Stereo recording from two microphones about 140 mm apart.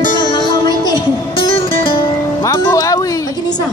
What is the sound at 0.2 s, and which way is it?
Music, 30° left (ahead or behind).